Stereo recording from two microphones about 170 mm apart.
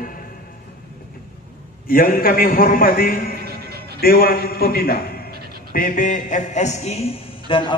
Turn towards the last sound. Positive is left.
turn(degrees=30)  # may be behind; listen again after turning